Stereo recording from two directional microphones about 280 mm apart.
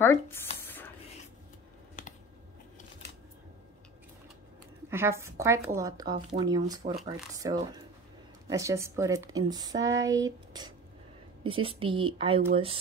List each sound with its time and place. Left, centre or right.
0.0 s speech: centre
2.0 s computer keyboard: left
4.8 s a woman's voice: centre